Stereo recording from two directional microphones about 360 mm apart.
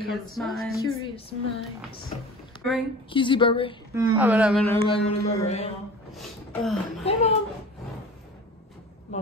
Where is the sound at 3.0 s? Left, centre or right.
Centre.